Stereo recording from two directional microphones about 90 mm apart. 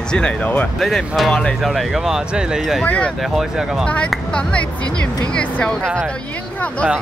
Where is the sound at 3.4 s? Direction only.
5° right (ahead or behind).